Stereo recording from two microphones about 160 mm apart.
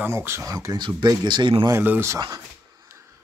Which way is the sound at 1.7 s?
15° right (ahead or behind).